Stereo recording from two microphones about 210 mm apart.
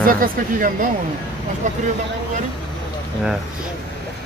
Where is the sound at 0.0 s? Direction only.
40° right (ahead or behind).